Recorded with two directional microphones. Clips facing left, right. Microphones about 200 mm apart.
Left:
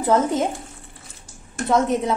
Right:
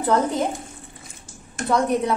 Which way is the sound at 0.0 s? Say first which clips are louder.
Left 2 dB; 25° left (ahead or behind).